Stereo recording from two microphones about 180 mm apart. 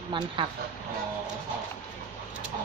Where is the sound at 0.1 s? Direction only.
25° right (ahead or behind).